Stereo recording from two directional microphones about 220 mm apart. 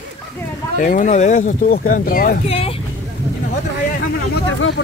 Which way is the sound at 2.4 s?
25° left (ahead or behind).